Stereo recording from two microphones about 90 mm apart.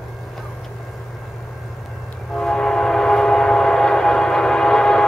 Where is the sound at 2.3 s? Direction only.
10° left (ahead or behind).